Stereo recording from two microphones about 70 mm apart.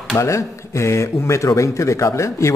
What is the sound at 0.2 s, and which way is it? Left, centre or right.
Speech, left.